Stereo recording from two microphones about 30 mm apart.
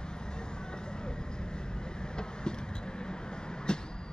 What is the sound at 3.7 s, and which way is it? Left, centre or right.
Vehicle, left.